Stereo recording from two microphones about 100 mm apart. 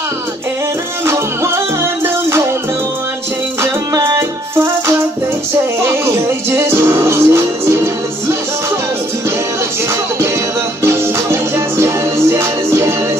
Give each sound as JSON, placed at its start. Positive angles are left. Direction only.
{"t": 3.6, "sound": "music", "side_deg": -25}
{"t": 6.7, "sound": "music", "side_deg": -25}
{"t": 11.5, "sound": "music", "side_deg": -25}